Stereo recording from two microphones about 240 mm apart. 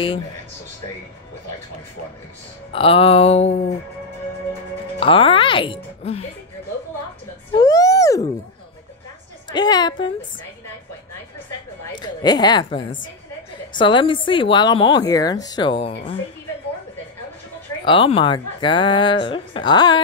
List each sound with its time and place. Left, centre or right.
2.7 s speech: left
5.0 s speech: left
7.5 s a sound: centre
9.5 s a woman's voice: centre
11.9 s speech: centre
17.8 s speech: left